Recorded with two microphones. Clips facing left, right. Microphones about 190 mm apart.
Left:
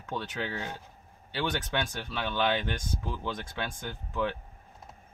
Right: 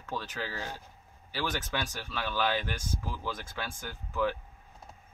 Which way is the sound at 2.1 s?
25° left (ahead or behind).